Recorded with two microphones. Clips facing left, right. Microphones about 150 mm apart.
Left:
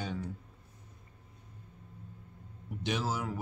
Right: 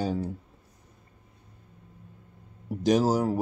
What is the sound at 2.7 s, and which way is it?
Speech, 40° right (ahead or behind).